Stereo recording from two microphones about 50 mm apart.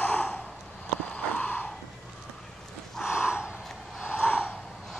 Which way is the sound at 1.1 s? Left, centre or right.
Left.